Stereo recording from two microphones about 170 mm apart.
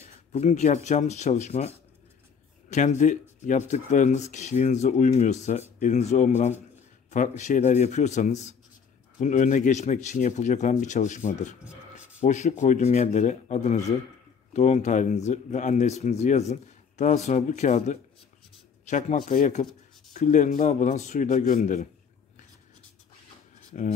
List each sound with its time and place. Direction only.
0.0 s speech: 40° left (ahead or behind)
2.7 s speech: 45° left (ahead or behind)